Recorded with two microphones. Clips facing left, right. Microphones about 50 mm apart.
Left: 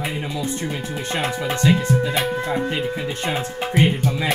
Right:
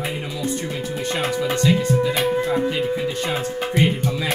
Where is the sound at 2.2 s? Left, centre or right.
Centre.